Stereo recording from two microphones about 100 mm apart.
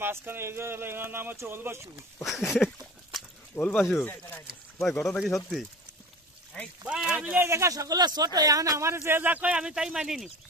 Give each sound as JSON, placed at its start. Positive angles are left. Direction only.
{"t": 0.0, "sound": "speech", "side_deg": -20}
{"t": 2.5, "sound": "a sound", "side_deg": 0}
{"t": 3.6, "sound": "speech", "side_deg": 25}
{"t": 5.0, "sound": "speech", "side_deg": 0}
{"t": 6.5, "sound": "speech", "side_deg": 10}
{"t": 6.9, "sound": "speech", "side_deg": -10}
{"t": 7.3, "sound": "speech", "side_deg": -25}